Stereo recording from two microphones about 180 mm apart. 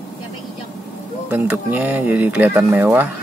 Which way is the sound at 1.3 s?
10° right (ahead or behind).